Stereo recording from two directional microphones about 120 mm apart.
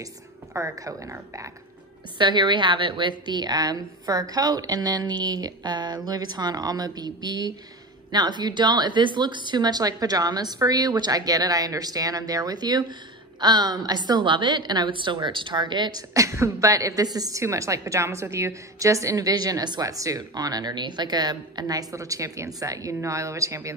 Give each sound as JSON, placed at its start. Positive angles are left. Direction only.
{"t": 0.0, "sound": "a woman's voice", "side_deg": -25}
{"t": 2.1, "sound": "a woman's voice", "side_deg": -40}